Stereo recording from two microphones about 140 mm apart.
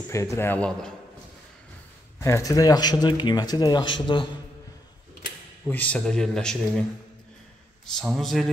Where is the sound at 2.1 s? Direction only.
20° left (ahead or behind); by 4.3 s 35° left (ahead or behind).